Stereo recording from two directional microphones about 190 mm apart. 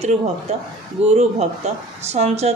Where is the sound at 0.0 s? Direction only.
35° right (ahead or behind).